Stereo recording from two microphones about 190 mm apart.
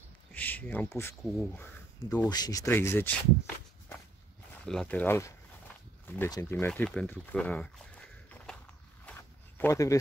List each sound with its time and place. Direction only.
0.3 s a sound: 10° left (ahead or behind)
1.2 s speech: centre (ahead or behind)
1.6 s a sound: 10° left (ahead or behind)
2.2 s speech: 20° left (ahead or behind)
4.6 s speech: 5° left (ahead or behind)
9.6 s speech: 15° left (ahead or behind)